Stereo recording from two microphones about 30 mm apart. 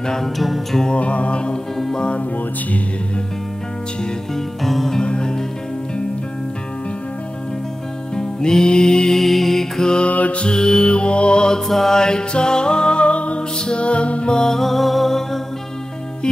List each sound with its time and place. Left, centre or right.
0.2 s music: centre
0.9 s music: left
4.6 s music: centre
8.1 s music: left
9.2 s music: centre
10.0 s mantra: left
10.6 s music: left
10.9 s music: left
11.6 s music: centre
12.0 s music: left
13.0 s music: left
14.3 s music: centre